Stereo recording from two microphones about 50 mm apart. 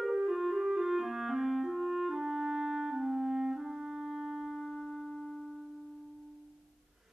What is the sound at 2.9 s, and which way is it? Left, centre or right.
Clarinet, centre.